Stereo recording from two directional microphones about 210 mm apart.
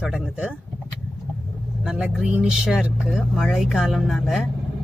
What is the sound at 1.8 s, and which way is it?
Speech, 5° right (ahead or behind).